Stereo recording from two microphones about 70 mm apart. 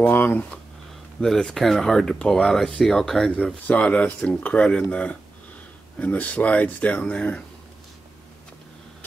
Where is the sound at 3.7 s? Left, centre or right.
Left.